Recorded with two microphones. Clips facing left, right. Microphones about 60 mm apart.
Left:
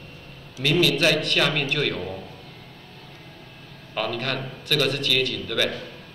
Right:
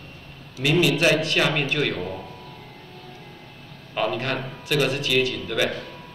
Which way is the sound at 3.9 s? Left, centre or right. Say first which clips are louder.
Right 2 dB; centre.